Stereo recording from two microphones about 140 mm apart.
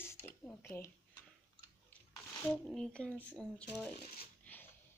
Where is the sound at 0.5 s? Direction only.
15° left (ahead or behind).